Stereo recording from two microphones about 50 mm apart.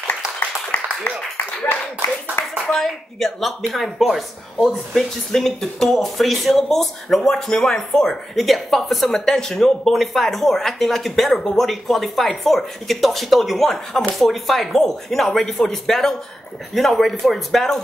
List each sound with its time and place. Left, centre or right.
0.7 s a sound: left
2.4 s speech: left
2.7 s speech: centre